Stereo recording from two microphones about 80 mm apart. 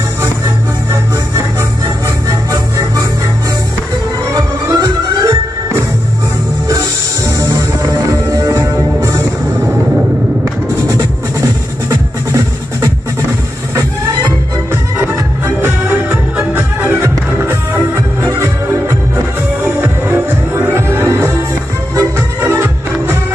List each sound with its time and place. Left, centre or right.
1.3 s music: right
4.3 s music: right
7.2 s music: right
11.9 s music: right
15.4 s music: right
17.9 s music: right
20.1 s music: right
21.9 s music: right